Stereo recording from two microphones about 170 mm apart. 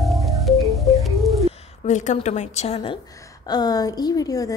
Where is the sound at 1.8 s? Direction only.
45° left (ahead or behind).